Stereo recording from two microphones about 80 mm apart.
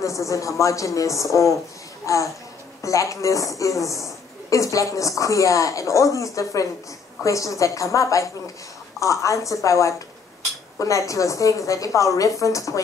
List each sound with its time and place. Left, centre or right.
0.0 s a woman's voice: left